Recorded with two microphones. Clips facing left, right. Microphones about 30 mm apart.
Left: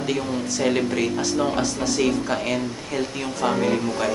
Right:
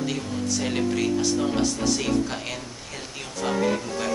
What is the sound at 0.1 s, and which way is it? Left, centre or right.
Speech, centre.